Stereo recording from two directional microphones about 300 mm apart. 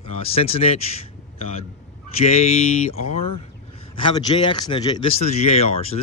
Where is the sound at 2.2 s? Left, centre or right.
Left.